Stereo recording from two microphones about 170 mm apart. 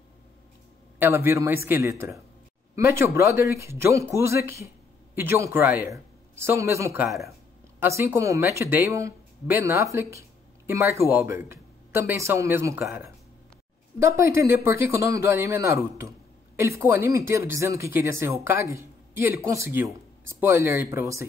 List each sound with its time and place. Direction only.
0.9 s speech: 15° right (ahead or behind)
7.1 s speech: centre (ahead or behind)
7.8 s speech: 15° right (ahead or behind)